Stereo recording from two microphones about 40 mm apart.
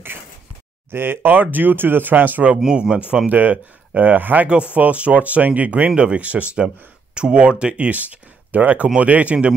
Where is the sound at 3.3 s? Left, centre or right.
Right.